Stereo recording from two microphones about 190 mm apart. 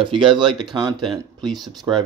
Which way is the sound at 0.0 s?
25° right (ahead or behind).